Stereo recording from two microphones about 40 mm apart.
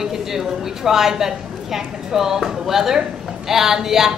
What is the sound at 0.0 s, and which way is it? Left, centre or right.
A woman's voice, centre.